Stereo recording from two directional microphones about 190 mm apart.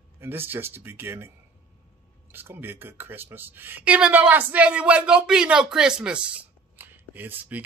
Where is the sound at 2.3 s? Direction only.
10° right (ahead or behind).